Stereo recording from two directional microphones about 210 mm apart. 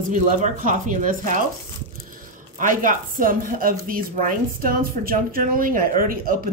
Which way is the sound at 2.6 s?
40° right (ahead or behind).